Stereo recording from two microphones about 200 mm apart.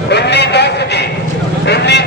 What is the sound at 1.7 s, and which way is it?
Vehicle, 55° left (ahead or behind).